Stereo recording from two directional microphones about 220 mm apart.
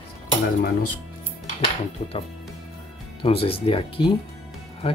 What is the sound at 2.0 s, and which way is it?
Speech, 30° left (ahead or behind).